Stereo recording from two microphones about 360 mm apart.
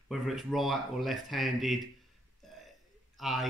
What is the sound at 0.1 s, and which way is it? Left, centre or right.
Speech, centre.